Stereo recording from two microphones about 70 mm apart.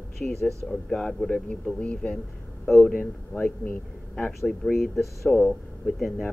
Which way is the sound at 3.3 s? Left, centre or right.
Left.